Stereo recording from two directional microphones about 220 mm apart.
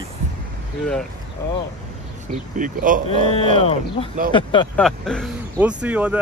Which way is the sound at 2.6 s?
35° right (ahead or behind).